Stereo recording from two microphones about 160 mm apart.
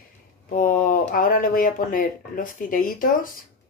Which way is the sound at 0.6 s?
60° left (ahead or behind).